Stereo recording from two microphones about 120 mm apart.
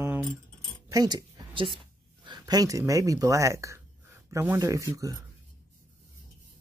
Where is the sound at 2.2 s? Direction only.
35° right (ahead or behind).